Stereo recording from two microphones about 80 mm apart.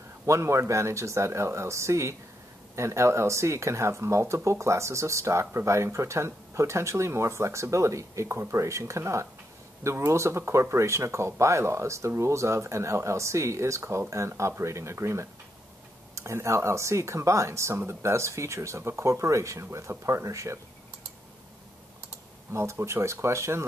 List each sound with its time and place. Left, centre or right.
0.3 s speech: right
22.5 s speech: right